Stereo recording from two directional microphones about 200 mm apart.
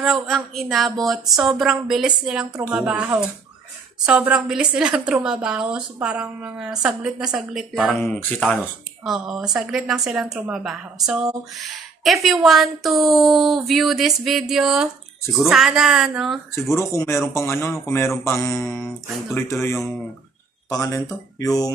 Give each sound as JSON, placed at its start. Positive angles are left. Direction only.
{"t": 0.0, "sound": "a woman's voice", "side_deg": 0}
{"t": 16.7, "sound": "mantra", "side_deg": 15}